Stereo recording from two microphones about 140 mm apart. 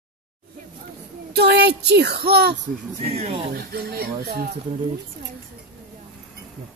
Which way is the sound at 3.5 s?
90° right.